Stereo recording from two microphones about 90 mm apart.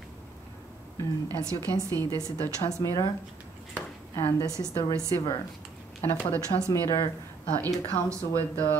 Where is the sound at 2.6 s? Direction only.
35° left (ahead or behind).